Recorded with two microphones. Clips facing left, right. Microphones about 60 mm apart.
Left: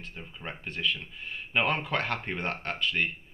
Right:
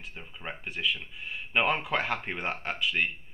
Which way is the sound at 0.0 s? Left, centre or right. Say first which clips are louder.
Even; centre.